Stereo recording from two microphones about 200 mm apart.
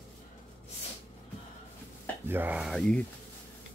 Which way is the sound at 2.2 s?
10° right (ahead or behind).